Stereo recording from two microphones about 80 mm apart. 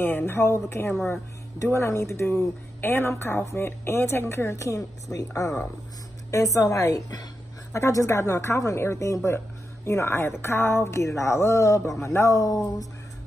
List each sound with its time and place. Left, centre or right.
0.0 s a woman's voice: left
7.7 s a woman's voice: left